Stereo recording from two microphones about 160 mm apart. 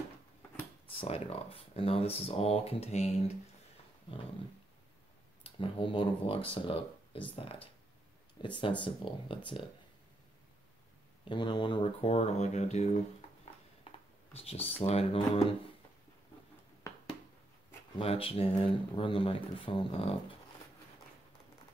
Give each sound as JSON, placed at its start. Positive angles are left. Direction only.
{"t": 0.9, "sound": "speech", "side_deg": 40}
{"t": 5.4, "sound": "speech", "side_deg": 30}
{"t": 11.2, "sound": "speech", "side_deg": 30}
{"t": 14.3, "sound": "speech", "side_deg": 40}
{"t": 17.9, "sound": "speech", "side_deg": 35}